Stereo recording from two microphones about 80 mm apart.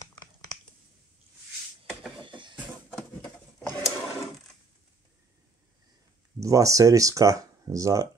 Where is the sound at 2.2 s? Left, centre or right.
Right.